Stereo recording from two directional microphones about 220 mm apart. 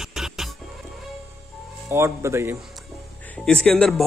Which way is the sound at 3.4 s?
5° left (ahead or behind).